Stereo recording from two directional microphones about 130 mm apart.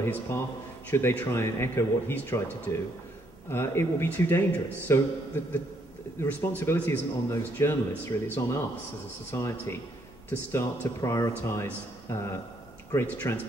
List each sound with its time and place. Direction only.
0.0 s a man's voice: 20° left (ahead or behind)